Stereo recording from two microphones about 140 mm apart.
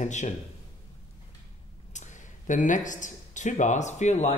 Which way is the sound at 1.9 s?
60° left (ahead or behind).